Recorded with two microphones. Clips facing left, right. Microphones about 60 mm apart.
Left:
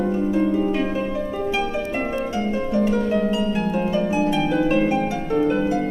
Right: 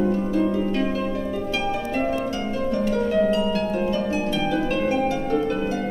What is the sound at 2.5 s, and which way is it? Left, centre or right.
Harp, centre.